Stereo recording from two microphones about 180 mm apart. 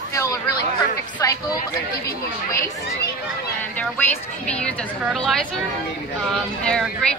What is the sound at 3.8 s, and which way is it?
A woman's voice, 5° left (ahead or behind).